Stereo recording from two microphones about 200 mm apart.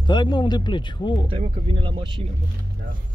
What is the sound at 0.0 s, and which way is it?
Speech, 20° left (ahead or behind).